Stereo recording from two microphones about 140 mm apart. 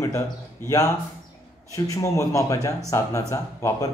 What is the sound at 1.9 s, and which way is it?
Speech, 25° left (ahead or behind).